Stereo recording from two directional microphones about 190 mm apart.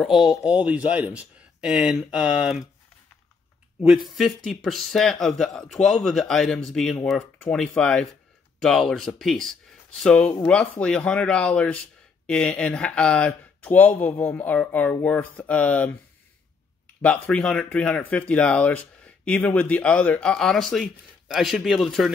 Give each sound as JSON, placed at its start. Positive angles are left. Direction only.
{"t": 0.0, "sound": "speech", "side_deg": 0}
{"t": 3.8, "sound": "speech", "side_deg": 0}
{"t": 17.0, "sound": "speech", "side_deg": 5}